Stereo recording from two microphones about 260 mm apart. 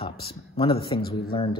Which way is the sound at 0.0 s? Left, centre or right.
Centre.